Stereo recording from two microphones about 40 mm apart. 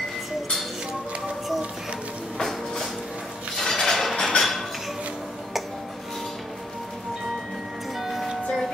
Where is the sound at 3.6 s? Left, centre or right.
Centre.